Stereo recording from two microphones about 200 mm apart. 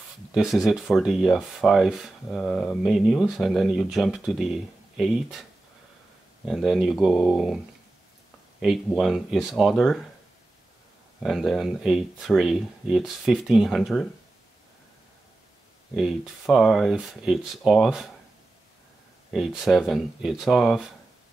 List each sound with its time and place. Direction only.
0.3 s speech: centre (ahead or behind)
6.4 s speech: centre (ahead or behind)
11.2 s speech: centre (ahead or behind)
15.9 s speech: 5° right (ahead or behind)
19.3 s speech: centre (ahead or behind)